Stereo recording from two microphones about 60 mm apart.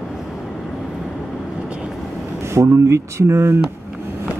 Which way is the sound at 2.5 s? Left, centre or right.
Right.